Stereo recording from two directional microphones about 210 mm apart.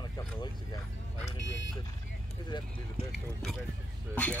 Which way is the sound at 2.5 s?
20° left (ahead or behind).